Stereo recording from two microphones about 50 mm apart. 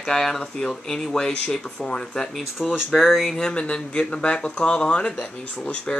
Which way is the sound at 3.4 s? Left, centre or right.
Left.